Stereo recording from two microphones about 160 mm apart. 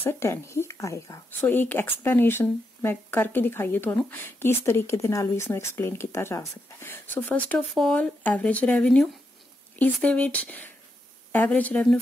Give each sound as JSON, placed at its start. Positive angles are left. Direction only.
{"t": 0.0, "sound": "speech", "side_deg": 15}